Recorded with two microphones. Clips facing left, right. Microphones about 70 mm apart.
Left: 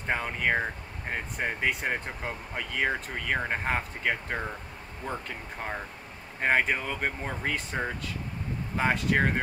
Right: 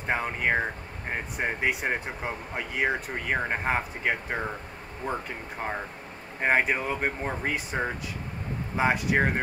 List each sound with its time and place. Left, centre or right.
0.0 s speech: centre